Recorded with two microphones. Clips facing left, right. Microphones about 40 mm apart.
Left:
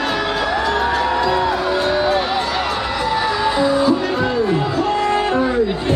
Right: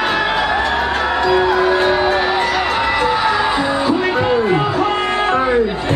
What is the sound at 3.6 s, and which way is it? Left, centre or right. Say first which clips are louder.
Music: left 1 dB; right.